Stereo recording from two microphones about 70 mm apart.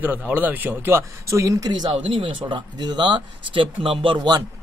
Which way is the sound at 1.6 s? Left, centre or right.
Right.